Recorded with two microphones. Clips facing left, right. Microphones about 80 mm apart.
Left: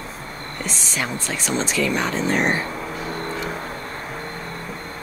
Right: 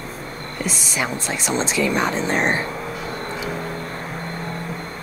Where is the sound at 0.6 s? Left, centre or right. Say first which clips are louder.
Right 3 dB; centre.